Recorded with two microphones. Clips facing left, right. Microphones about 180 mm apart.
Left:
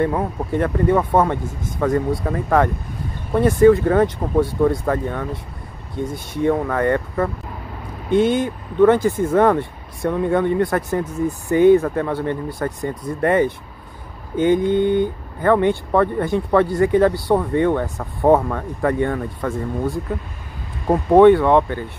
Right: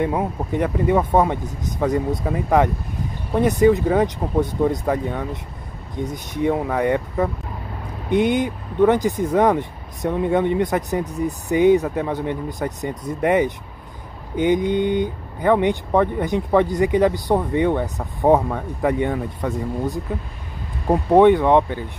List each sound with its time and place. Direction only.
0.0 s speech: 15° right (ahead or behind)
21.2 s speech: 15° right (ahead or behind)